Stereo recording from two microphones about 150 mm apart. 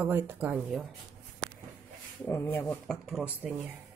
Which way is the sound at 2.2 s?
15° left (ahead or behind).